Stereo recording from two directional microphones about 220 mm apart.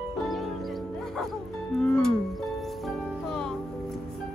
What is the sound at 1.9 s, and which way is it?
Music, 5° left (ahead or behind).